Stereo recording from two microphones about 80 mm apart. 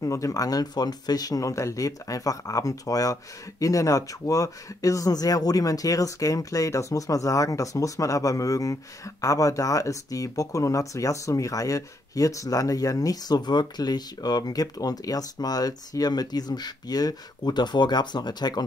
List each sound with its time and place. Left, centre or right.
0.0 s speech: left